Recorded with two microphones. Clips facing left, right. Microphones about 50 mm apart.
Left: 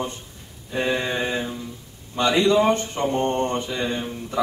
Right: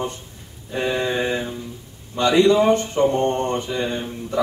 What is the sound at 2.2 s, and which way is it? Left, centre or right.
Speech, centre.